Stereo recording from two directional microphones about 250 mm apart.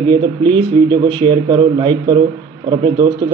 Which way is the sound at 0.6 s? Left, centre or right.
Centre.